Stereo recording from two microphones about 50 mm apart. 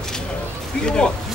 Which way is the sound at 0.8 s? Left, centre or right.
Centre.